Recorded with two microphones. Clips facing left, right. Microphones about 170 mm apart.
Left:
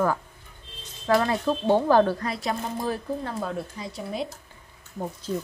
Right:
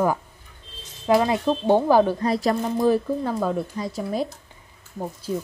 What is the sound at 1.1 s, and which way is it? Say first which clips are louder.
Speech: right 3 dB; 15° right (ahead or behind).